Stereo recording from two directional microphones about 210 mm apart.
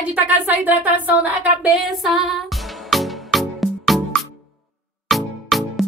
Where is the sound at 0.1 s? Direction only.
10° right (ahead or behind).